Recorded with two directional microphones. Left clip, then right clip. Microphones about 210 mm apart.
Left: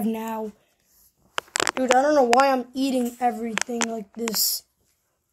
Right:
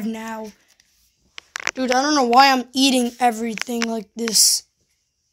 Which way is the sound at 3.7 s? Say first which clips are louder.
Right 3 dB; 75° right (ahead or behind).